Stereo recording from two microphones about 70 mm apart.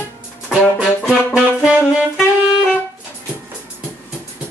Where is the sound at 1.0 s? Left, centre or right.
Centre.